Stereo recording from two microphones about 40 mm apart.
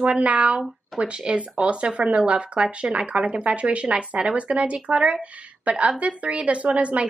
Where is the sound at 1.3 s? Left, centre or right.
Right.